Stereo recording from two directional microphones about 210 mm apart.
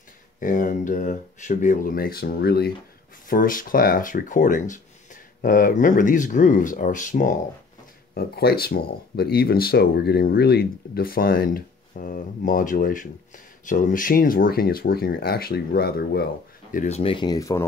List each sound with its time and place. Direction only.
0.4 s speech: 40° left (ahead or behind)
8.1 s speech: 45° left (ahead or behind)
16.7 s speech: 30° left (ahead or behind); by 17.6 s 15° left (ahead or behind)